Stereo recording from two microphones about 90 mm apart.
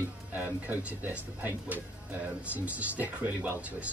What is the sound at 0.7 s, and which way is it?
Speech, 20° right (ahead or behind).